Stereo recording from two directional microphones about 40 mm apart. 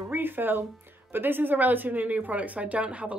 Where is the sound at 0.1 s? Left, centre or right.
Right.